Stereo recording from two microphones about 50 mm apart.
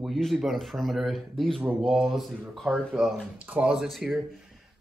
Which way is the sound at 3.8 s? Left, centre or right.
Centre.